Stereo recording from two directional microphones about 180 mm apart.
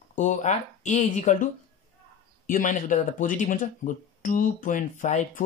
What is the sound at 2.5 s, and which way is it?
Speech, 45° left (ahead or behind).